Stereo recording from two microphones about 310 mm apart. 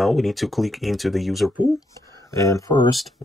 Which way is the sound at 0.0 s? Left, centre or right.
Centre.